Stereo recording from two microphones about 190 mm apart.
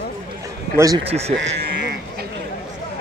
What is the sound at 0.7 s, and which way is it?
Speech, 20° right (ahead or behind).